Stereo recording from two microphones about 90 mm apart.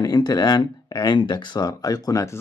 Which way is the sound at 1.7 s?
45° left (ahead or behind).